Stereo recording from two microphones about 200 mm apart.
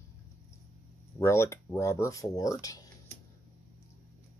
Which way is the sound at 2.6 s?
20° left (ahead or behind).